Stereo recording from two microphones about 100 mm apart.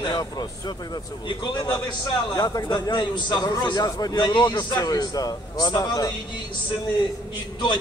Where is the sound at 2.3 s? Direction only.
40° left (ahead or behind).